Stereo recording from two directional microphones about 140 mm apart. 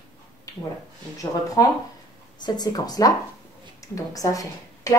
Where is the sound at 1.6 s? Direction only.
25° left (ahead or behind).